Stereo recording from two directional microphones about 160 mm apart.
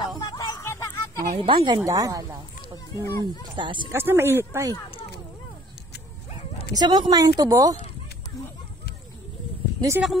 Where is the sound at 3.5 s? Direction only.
30° right (ahead or behind).